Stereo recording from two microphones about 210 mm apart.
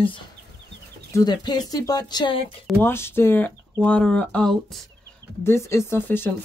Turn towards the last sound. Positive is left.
turn(degrees=10)  # may be behind; listen again after turning